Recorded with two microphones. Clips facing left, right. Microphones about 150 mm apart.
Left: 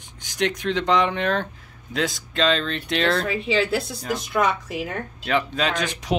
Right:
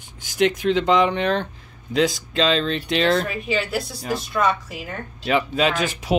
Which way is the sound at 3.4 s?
25° left (ahead or behind).